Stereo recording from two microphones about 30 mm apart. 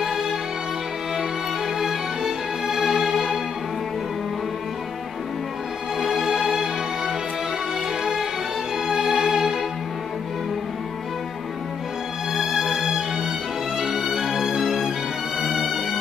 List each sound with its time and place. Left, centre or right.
0.0 s music: centre
1.8 s music: centre
5.9 s music: centre
8.0 s music: centre
12.4 s music: centre